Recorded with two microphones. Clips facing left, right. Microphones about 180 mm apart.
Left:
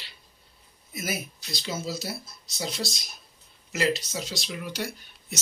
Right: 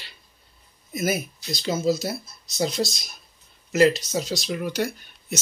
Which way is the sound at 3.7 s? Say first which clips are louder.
Right 8 dB; 45° right (ahead or behind).